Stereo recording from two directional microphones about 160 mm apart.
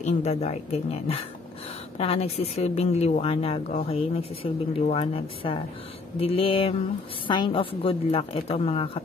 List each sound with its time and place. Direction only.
0.0 s a woman's voice: 45° left (ahead or behind)